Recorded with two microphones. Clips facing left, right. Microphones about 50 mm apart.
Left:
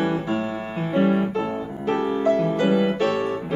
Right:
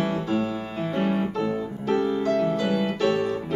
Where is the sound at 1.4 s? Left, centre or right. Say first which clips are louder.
Left 1 dB; left.